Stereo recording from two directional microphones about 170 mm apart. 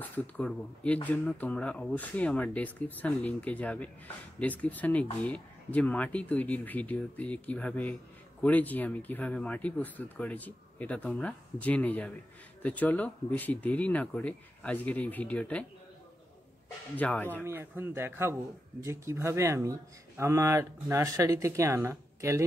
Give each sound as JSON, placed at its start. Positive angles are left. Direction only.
{"t": 0.0, "sound": "speech", "side_deg": 10}
{"t": 16.9, "sound": "speech", "side_deg": 10}
{"t": 17.4, "sound": "speech", "side_deg": -10}